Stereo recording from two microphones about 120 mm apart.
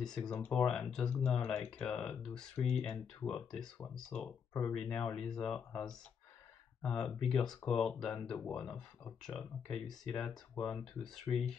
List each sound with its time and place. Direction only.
0.0 s speech: 5° left (ahead or behind)
11.3 s speech: 20° left (ahead or behind)